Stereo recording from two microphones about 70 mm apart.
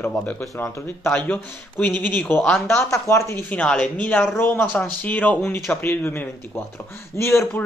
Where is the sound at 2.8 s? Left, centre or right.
Left.